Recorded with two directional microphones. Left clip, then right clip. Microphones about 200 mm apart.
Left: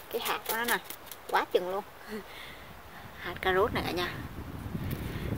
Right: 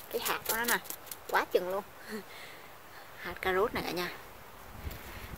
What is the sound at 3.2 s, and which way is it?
Speech, 20° left (ahead or behind).